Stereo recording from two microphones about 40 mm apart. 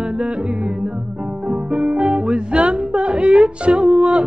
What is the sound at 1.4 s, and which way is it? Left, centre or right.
Music, right.